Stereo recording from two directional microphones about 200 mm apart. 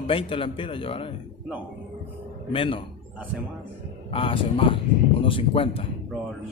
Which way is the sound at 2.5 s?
25° left (ahead or behind).